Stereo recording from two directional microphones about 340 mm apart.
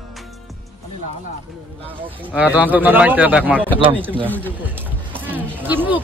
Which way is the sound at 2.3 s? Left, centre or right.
Centre.